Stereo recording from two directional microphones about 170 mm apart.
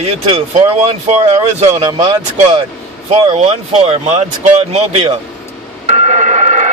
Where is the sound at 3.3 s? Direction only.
40° right (ahead or behind).